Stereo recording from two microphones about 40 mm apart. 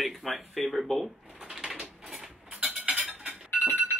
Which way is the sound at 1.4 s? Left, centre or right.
Centre.